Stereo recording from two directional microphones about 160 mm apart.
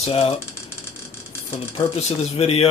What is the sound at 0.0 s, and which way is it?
Speech, 40° left (ahead or behind).